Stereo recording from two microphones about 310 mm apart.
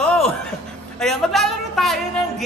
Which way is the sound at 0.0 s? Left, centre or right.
Centre.